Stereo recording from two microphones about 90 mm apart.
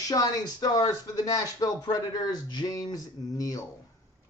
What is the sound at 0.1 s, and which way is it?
Speech, 45° left (ahead or behind).